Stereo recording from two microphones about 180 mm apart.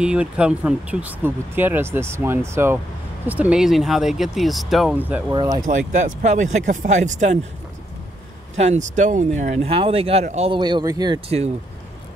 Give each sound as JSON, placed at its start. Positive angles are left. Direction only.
{"t": 0.0, "sound": "speech", "side_deg": -5}
{"t": 5.3, "sound": "speech", "side_deg": -20}
{"t": 5.7, "sound": "speech", "side_deg": -45}
{"t": 8.5, "sound": "speech", "side_deg": -40}